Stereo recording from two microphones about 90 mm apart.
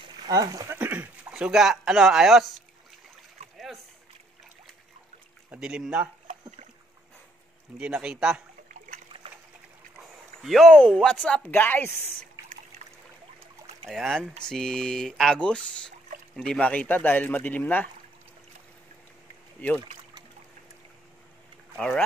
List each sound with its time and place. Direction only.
0.3 s speech: 40° right (ahead or behind)
0.7 s a sound: 20° right (ahead or behind)
1.3 s speech: 5° right (ahead or behind)
3.5 s rowboat: centre (ahead or behind)
5.5 s a man's voice: 10° right (ahead or behind)
7.8 s a man's voice: 10° right (ahead or behind)
9.9 s boat: centre (ahead or behind)
10.7 s speech: 10° left (ahead or behind)
11.5 s a woman's voice: 20° left (ahead or behind)
13.8 s speech: centre (ahead or behind); by 17.8 s 20° left (ahead or behind)
21.7 s speech: 10° left (ahead or behind)